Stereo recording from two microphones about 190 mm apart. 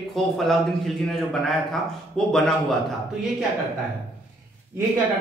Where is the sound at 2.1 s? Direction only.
Centre (ahead or behind).